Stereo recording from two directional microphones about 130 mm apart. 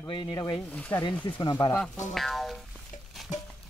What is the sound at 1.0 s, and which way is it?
Speech, 35° left (ahead or behind).